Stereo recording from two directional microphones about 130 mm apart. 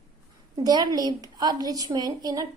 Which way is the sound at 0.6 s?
30° right (ahead or behind).